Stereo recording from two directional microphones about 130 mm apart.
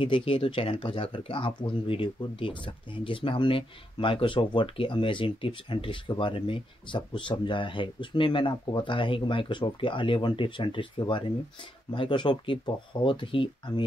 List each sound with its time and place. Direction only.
0.0 s speech: 45° left (ahead or behind)